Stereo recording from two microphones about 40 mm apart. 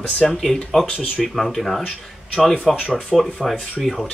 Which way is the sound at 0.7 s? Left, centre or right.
Centre.